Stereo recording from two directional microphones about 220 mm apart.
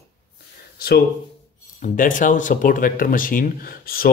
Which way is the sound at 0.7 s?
45° left (ahead or behind).